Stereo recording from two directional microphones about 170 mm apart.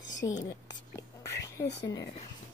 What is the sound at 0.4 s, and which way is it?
Speech, 20° left (ahead or behind).